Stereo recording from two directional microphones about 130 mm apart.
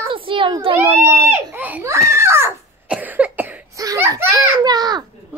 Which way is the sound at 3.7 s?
25° right (ahead or behind).